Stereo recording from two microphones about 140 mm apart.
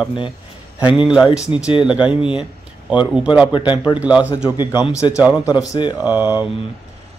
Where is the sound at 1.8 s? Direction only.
10° right (ahead or behind).